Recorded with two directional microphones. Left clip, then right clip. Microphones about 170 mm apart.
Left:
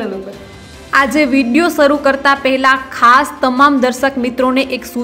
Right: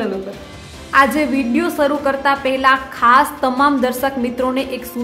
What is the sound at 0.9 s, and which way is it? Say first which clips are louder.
A woman's voice: left 2 dB; 25° left (ahead or behind).